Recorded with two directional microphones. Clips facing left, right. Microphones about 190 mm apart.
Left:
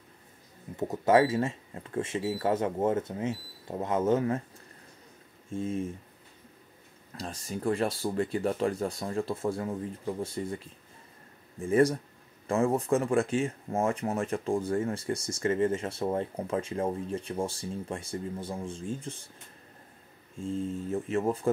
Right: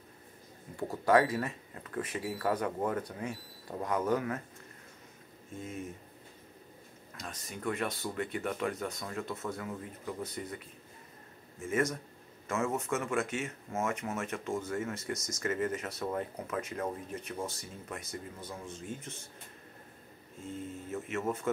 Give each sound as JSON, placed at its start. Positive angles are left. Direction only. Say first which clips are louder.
{"t": 0.7, "sound": "speech", "louder": "left 3 dB", "side_deg": 20}
{"t": 5.5, "sound": "speech", "louder": "left 9 dB", "side_deg": 30}
{"t": 7.1, "sound": "speech", "louder": "left 7 dB", "side_deg": 30}
{"t": 20.4, "sound": "speech", "louder": "left 8 dB", "side_deg": 30}